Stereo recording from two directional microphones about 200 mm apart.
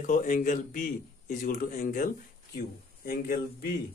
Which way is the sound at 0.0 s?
40° left (ahead or behind).